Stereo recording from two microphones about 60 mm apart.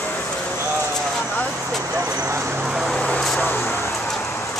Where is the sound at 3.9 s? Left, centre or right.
Centre.